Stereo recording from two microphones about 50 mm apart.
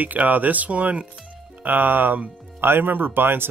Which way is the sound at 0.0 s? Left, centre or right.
Right.